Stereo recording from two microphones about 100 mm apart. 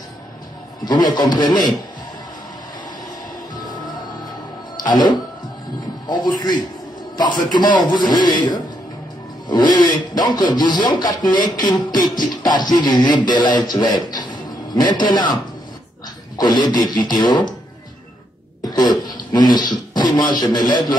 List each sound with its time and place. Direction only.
0.8 s speech: 45° left (ahead or behind)
4.8 s speech: 45° left (ahead or behind)
16.3 s speech: 45° left (ahead or behind)
18.6 s throat clearing: 45° left (ahead or behind)
19.0 s speech: 45° left (ahead or behind)